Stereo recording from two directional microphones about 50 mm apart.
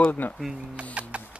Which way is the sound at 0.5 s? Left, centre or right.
Right.